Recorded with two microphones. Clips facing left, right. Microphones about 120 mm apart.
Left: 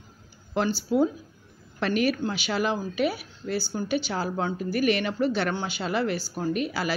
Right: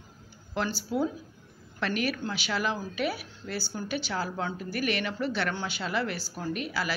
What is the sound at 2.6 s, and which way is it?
A woman's voice, 20° left (ahead or behind).